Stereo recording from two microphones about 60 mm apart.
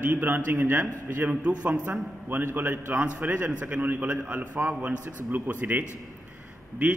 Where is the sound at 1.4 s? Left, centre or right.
Centre.